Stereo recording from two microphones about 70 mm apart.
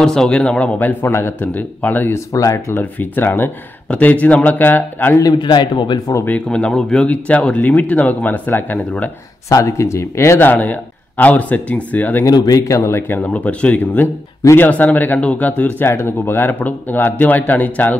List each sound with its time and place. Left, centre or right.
0.0 s speech: centre
1.0 s speech: left
1.4 s speech: left
2.1 s speech: left
2.8 s speech: left
5.2 s speech: left
6.2 s speech: centre
9.5 s speech: left
10.5 s speech: left
12.3 s speech: left
13.3 s speech: centre